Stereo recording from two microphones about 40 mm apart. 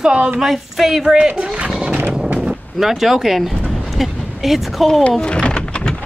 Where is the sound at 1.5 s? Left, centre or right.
Right.